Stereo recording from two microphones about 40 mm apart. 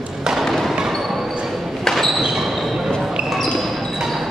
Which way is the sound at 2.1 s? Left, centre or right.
Centre.